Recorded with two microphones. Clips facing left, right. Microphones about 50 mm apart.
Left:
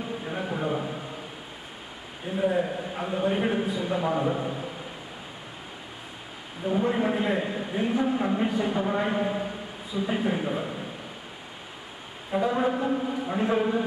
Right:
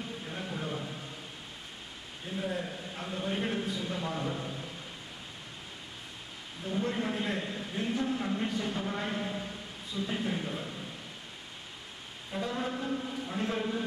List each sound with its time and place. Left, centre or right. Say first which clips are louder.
0.2 s a sound: left 9 dB; left
2.2 s a man's voice: left 10 dB; centre
6.6 s a man's voice: left 8 dB; centre
12.3 s a man's voice: left 10 dB; left